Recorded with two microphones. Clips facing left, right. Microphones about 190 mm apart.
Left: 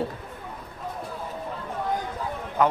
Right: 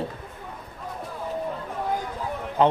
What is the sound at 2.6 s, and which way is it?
Speech, 25° right (ahead or behind).